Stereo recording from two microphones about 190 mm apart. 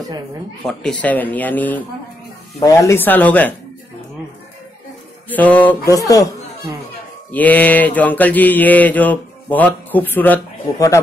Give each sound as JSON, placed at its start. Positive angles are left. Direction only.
{"t": 0.6, "sound": "speech", "side_deg": 0}
{"t": 1.0, "sound": "mantra", "side_deg": 10}
{"t": 5.3, "sound": "mantra", "side_deg": 10}
{"t": 7.2, "sound": "mantra", "side_deg": 10}